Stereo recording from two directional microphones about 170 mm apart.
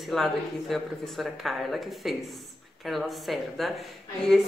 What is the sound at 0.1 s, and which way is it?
A woman's voice, centre (ahead or behind).